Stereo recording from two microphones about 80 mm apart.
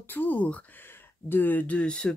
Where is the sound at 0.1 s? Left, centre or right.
Left.